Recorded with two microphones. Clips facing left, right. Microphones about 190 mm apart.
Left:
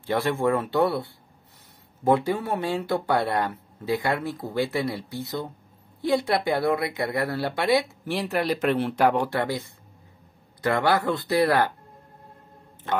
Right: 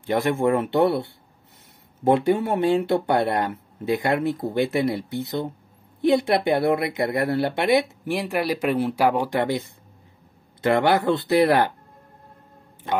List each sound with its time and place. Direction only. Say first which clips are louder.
0.0 s speech: right 3 dB; 20° right (ahead or behind)
9.3 s speech: right 4 dB; 20° right (ahead or behind)
10.6 s speech: right 3 dB; 25° right (ahead or behind)